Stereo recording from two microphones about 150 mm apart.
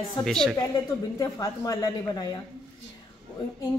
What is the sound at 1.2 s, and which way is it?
A woman's voice, 25° left (ahead or behind).